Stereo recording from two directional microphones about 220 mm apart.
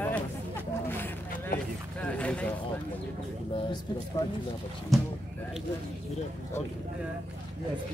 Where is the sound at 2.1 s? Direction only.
5° left (ahead or behind).